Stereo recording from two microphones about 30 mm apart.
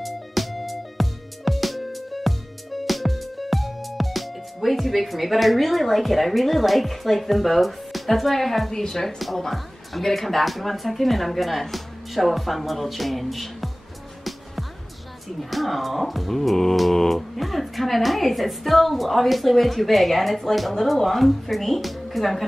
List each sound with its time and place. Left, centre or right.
0.0 s music: centre
8.8 s speech: centre
9.2 s a woman's voice: centre
14.2 s music: centre
15.5 s a woman's voice: centre
16.9 s a sound: centre
17.4 s a woman's voice: centre